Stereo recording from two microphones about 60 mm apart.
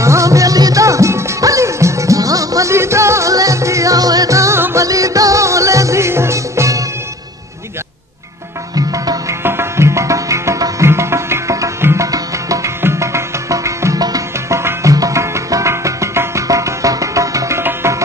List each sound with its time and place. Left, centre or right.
0.0 s music: right
2.7 s music: right
8.7 s music: right
9.4 s music: right
12.1 s music: right
12.8 s music: right
14.5 s music: right
14.9 s music: right
17.6 s music: right